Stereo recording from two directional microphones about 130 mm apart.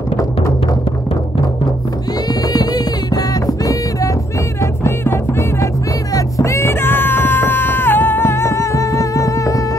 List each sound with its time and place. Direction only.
2.4 s music: 30° left (ahead or behind)